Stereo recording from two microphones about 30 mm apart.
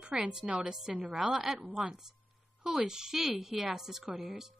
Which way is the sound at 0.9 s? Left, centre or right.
Right.